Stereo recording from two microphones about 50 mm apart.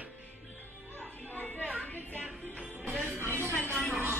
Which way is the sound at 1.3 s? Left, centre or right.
Left.